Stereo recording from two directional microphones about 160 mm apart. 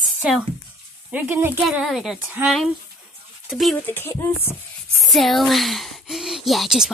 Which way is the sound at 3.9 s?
15° left (ahead or behind).